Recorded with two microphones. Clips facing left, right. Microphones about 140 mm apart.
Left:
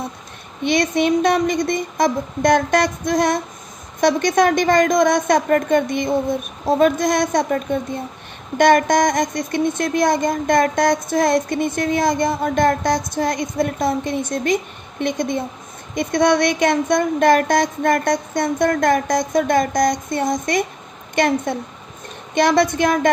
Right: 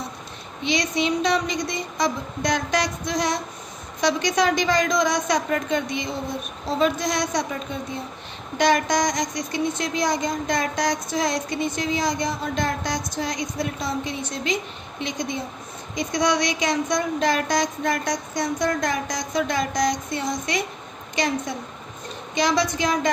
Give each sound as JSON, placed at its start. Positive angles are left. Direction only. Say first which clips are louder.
{"t": 0.7, "sound": "a woman's voice", "louder": "left 6 dB", "side_deg": 55}